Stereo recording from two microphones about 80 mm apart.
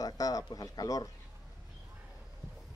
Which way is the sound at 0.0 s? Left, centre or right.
Left.